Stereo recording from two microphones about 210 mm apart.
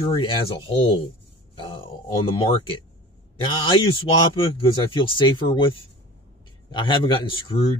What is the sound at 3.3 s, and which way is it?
A man's voice, 25° left (ahead or behind).